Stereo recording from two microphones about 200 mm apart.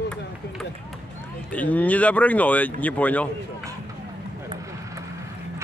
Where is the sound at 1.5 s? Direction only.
5° left (ahead or behind).